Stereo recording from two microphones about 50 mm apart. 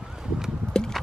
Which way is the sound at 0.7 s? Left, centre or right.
Centre.